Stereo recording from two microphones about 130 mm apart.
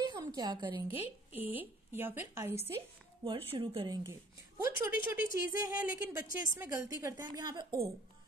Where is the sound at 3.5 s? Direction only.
45° right (ahead or behind).